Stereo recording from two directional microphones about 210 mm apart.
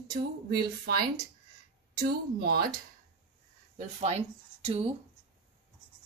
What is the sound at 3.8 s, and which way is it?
Speech, 30° right (ahead or behind).